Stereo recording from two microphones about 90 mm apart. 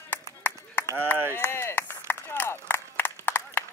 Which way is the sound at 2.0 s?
25° left (ahead or behind).